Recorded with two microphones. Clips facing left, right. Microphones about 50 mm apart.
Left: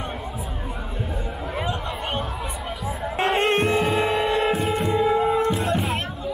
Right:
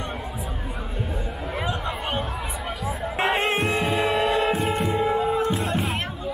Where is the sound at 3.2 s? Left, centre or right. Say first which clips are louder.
Left 2 dB; centre.